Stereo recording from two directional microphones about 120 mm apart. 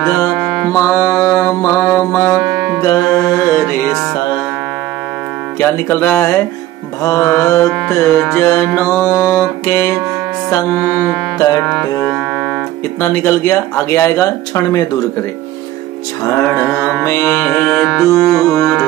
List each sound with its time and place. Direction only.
0.7 s mantra: 25° left (ahead or behind)
2.8 s music: 30° left (ahead or behind)
5.6 s music: 15° left (ahead or behind)
11.3 s music: 30° left (ahead or behind)
11.6 s music: 5° left (ahead or behind)
13.0 s music: 20° left (ahead or behind)
16.6 s music: 5° right (ahead or behind)
17.0 s music: 25° left (ahead or behind)
17.5 s music: 10° left (ahead or behind)